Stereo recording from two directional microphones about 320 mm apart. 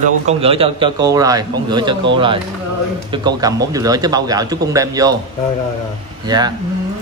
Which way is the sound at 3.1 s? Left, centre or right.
Centre.